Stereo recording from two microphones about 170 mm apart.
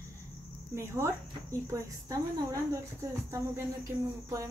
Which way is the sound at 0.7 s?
15° right (ahead or behind).